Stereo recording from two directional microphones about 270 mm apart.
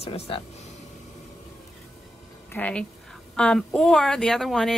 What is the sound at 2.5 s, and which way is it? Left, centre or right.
Speech, centre.